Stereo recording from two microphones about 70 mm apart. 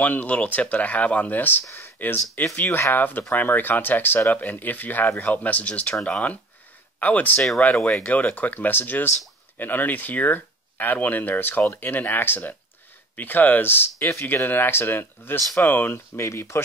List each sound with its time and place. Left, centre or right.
0.0 s speech: left
16.2 s speech: left